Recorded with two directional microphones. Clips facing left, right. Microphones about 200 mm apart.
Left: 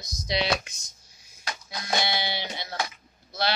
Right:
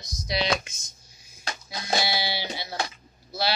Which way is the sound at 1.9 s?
5° right (ahead or behind).